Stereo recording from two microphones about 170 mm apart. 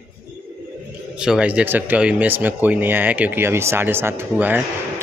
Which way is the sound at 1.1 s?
5° right (ahead or behind).